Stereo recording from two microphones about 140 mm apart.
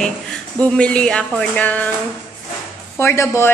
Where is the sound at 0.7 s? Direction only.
5° left (ahead or behind).